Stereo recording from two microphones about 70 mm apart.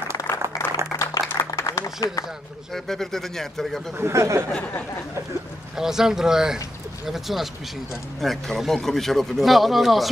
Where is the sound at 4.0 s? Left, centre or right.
Right.